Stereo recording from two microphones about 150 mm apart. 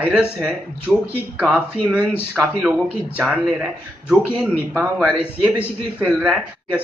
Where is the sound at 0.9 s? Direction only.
5° left (ahead or behind).